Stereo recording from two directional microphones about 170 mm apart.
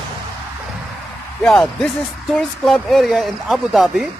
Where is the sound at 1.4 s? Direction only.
5° left (ahead or behind).